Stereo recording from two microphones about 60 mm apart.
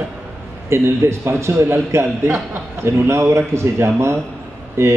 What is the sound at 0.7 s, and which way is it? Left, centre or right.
Speech, right.